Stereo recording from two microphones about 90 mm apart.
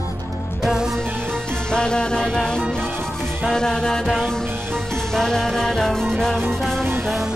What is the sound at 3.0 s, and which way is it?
Music, 5° left (ahead or behind).